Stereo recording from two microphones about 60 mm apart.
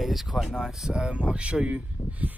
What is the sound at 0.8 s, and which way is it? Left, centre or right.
Speech, centre.